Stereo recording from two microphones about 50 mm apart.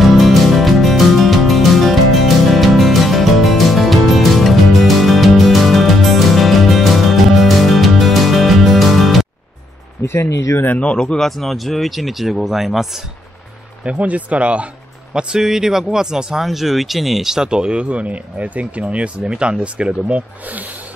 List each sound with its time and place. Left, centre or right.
0.0 s music: centre
10.1 s speech: left
10.8 s speech: left
11.1 s speech: centre
13.8 s speech: right
15.1 s speech: centre; by 20.7 s right